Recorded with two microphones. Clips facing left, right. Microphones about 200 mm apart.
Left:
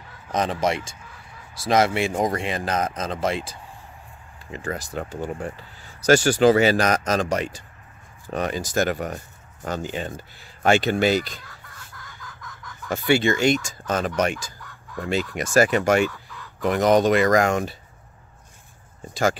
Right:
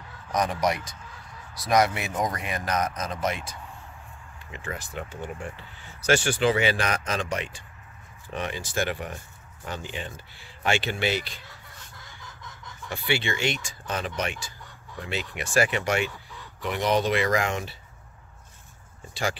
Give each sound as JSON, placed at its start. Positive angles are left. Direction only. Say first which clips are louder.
{"t": 0.3, "sound": "a man's voice", "louder": "left 2 dB", "side_deg": 25}
{"t": 12.2, "sound": "chicken", "louder": "left 3 dB", "side_deg": -25}
{"t": 12.9, "sound": "speech", "louder": "left 8 dB", "side_deg": 45}